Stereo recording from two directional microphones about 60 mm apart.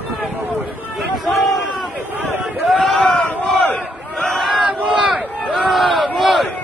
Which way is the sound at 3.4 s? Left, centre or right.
Left.